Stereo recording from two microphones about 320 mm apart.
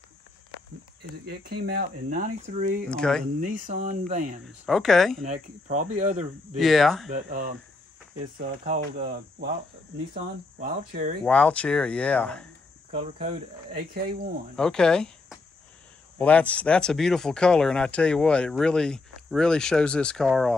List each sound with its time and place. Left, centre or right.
1.2 s speech: right
2.9 s speech: centre
3.3 s speech: right
4.6 s speech: centre
5.2 s speech: right
6.5 s speech: centre
7.1 s speech: right
11.2 s speech: centre
12.9 s speech: right
14.5 s speech: centre